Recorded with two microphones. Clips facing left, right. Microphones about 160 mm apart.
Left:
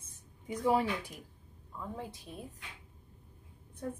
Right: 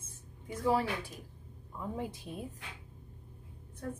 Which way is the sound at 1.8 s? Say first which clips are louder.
Right 4 dB; 15° right (ahead or behind).